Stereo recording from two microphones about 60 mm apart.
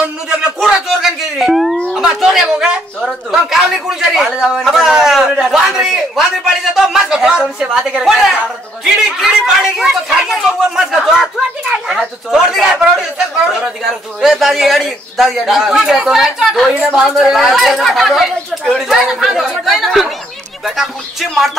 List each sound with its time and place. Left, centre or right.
0.4 s a sound: centre
1.4 s music: centre
1.9 s speech: centre
3.0 s a man's voice: centre
14.3 s a man's voice: centre